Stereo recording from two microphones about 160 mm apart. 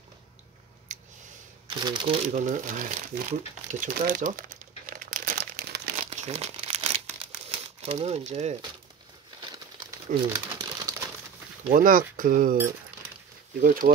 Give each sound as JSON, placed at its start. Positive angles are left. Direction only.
{"t": 0.9, "sound": "a sound", "side_deg": -50}
{"t": 1.7, "sound": "speech", "side_deg": -25}
{"t": 2.2, "sound": "speech", "side_deg": -50}
{"t": 3.8, "sound": "crumpling", "side_deg": -60}
{"t": 6.0, "sound": "crumpling", "side_deg": -40}
{"t": 7.4, "sound": "speech", "side_deg": -40}
{"t": 9.5, "sound": "crumpling", "side_deg": -20}
{"t": 11.7, "sound": "speech", "side_deg": -60}
{"t": 13.6, "sound": "speech", "side_deg": -60}